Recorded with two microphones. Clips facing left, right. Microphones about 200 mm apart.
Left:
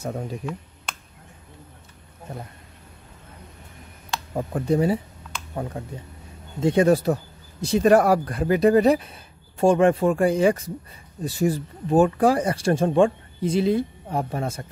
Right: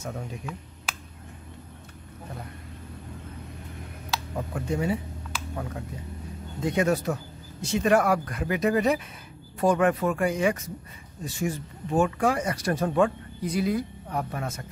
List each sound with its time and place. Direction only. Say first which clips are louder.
0.0 s speech: left 6 dB; 35° left (ahead or behind)
0.9 s a sound: even; 5° right (ahead or behind)
4.4 s speech: left 8 dB; 35° left (ahead or behind)